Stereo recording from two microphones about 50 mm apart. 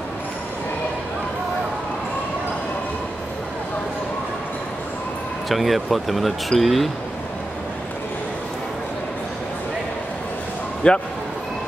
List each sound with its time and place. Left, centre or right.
5.5 s speech: centre
10.8 s speech: left